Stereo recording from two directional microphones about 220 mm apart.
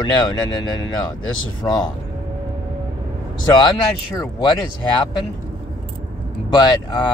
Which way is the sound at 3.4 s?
20° left (ahead or behind).